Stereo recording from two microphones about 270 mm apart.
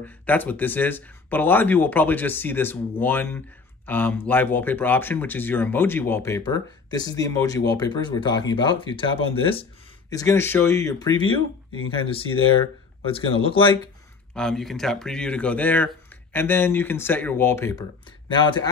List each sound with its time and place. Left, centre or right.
0.0 s speech: centre
13.0 s speech: centre
14.3 s speech: centre